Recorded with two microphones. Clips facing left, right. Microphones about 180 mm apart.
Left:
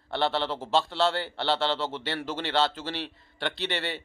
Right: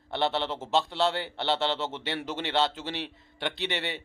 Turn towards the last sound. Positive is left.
turn(degrees=-20)  # may be behind; listen again after turning